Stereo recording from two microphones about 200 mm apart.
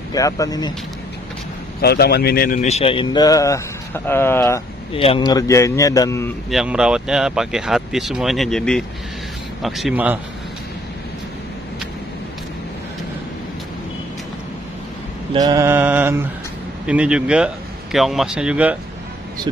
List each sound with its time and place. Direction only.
0.1 s a man's voice: 15° left (ahead or behind)
1.8 s a man's voice: 55° left (ahead or behind); by 4.6 s 10° left (ahead or behind)
4.9 s a man's voice: 25° left (ahead or behind)
6.5 s speech: 5° right (ahead or behind)
15.3 s mantra: 20° right (ahead or behind)
16.8 s speech: 5° right (ahead or behind)